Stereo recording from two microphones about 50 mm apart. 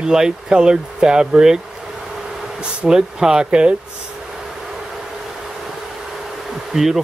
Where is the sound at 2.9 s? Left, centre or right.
Centre.